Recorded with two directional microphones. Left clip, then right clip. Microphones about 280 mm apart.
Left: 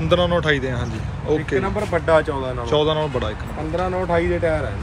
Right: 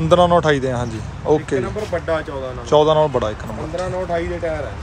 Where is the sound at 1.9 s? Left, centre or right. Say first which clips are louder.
Left 5 dB; centre.